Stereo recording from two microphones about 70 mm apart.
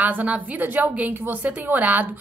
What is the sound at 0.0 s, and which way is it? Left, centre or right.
A woman's voice, right.